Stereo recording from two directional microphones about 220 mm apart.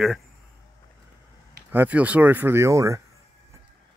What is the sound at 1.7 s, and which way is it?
Speech, 5° right (ahead or behind).